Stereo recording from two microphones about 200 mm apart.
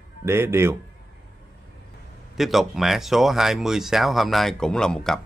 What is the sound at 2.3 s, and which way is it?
Speech, centre (ahead or behind).